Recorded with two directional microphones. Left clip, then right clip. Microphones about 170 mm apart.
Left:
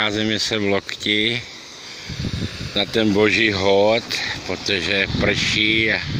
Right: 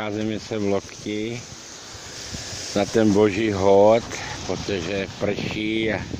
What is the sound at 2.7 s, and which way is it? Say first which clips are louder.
Speech: even; 15° right (ahead or behind).